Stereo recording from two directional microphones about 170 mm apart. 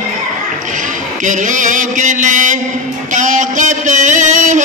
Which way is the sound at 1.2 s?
50° right (ahead or behind).